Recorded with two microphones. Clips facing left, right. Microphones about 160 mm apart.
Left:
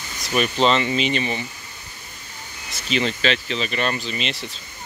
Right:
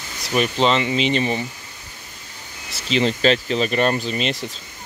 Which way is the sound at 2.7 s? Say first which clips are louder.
Right 3 dB; 30° right (ahead or behind).